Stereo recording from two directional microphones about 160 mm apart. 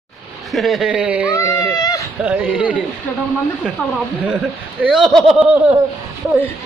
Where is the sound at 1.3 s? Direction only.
20° left (ahead or behind).